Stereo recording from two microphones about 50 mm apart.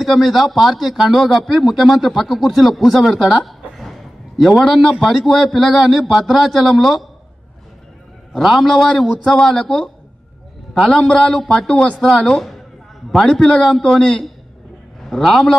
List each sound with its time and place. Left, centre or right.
0.0 s a man's voice: centre
8.3 s a man's voice: centre
11.7 s speech: left
12.3 s a woman's voice: centre